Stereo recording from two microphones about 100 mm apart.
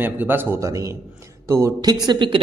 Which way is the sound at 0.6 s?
35° right (ahead or behind).